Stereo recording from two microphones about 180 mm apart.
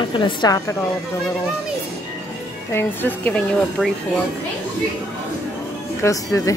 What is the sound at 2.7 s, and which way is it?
Speech, 10° left (ahead or behind).